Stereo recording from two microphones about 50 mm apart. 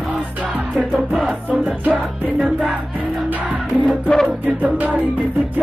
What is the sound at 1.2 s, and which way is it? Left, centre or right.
Music, right.